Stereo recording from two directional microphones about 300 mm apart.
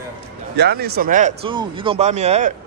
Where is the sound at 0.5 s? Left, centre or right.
Right.